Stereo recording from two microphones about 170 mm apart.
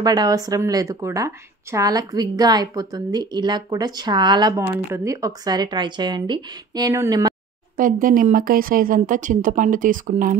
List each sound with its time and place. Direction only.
0.0 s speech: 25° right (ahead or behind)
7.7 s a woman's voice: 55° right (ahead or behind)